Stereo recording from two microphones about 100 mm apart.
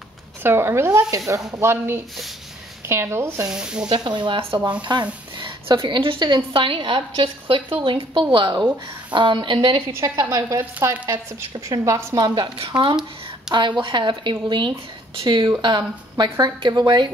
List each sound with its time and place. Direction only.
0.4 s speech: 25° right (ahead or behind)
3.4 s speech: 10° right (ahead or behind)
3.9 s a woman's voice: 50° right (ahead or behind)
4.9 s a woman's voice: 45° right (ahead or behind)
9.9 s a woman's voice: 35° right (ahead or behind)
11.5 s a woman's voice: 35° right (ahead or behind)
13.5 s a woman's voice: 50° right (ahead or behind)